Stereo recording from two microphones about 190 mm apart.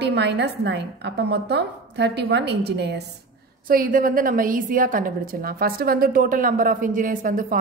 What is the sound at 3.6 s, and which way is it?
Speech, 50° right (ahead or behind).